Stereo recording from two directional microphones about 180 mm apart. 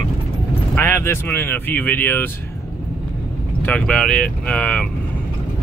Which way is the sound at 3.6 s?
5° left (ahead or behind).